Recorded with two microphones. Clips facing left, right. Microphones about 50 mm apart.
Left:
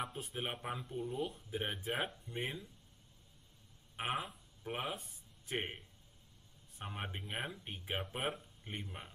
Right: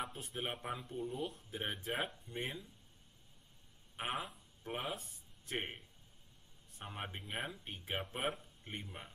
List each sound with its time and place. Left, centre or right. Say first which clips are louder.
0.0 s speech: left 1 dB; centre
3.9 s speech: left 2 dB; centre
6.8 s speech: left 1 dB; centre